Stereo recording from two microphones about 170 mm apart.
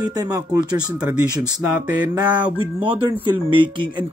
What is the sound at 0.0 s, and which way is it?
Speech, 25° right (ahead or behind).